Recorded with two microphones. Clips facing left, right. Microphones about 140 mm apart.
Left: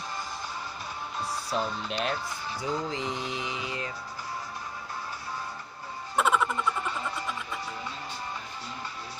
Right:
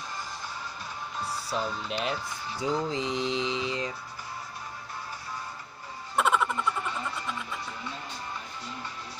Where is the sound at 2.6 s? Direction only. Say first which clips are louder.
Right 3 dB; 20° right (ahead or behind).